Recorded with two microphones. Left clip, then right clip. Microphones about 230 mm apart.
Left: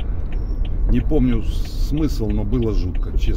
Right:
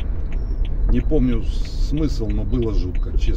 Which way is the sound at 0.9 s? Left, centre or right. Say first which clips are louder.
Left 1 dB; left.